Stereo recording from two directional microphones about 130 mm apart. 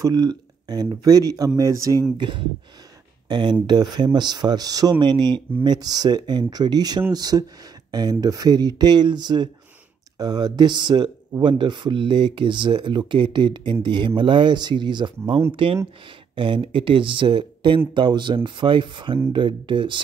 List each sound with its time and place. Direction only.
0.0 s speech: 30° right (ahead or behind)
2.1 s speech: 40° right (ahead or behind)